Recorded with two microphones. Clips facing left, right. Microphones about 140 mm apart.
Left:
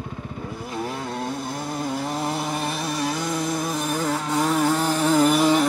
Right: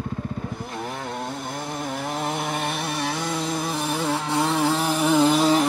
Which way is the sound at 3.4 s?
Centre (ahead or behind).